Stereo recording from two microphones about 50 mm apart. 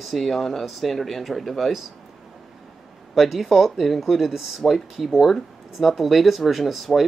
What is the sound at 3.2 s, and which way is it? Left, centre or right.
Speech, centre.